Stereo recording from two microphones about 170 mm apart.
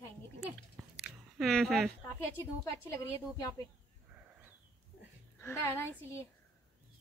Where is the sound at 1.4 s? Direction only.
Centre (ahead or behind).